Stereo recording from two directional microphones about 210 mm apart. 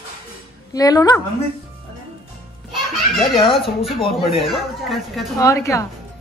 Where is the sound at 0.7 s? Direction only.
15° left (ahead or behind).